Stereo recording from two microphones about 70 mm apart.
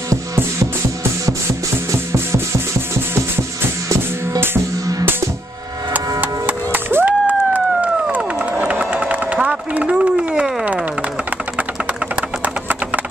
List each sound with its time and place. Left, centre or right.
1.9 s music: right
5.9 s music: right
12.2 s a sound: right